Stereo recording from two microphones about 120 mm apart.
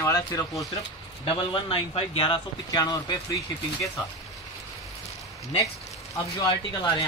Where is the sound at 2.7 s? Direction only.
30° left (ahead or behind).